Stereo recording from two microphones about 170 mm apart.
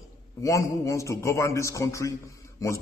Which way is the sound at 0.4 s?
20° left (ahead or behind).